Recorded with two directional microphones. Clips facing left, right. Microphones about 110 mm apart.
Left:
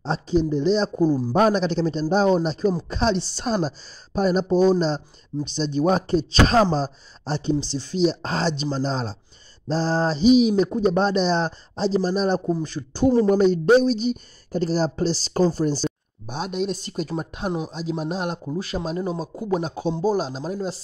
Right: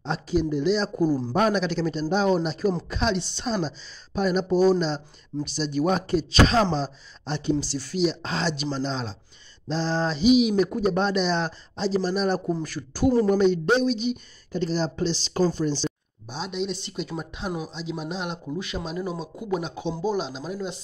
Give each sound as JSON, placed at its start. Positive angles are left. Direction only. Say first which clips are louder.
{"t": 0.0, "sound": "speech", "louder": "left 3 dB", "side_deg": 30}
{"t": 12.6, "sound": "speech", "louder": "left 3 dB", "side_deg": 25}
{"t": 13.3, "sound": "speech", "louder": "left 4 dB", "side_deg": 40}